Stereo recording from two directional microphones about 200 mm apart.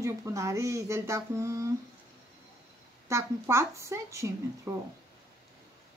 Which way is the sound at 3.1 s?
15° right (ahead or behind).